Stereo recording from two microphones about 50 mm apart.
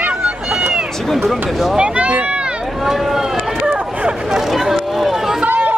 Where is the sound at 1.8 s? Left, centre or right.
Right.